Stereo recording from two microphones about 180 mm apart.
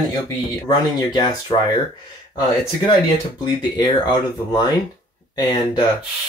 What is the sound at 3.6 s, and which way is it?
Speech, 25° left (ahead or behind).